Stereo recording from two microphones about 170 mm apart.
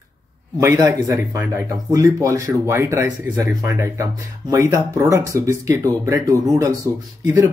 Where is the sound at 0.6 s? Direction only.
20° right (ahead or behind).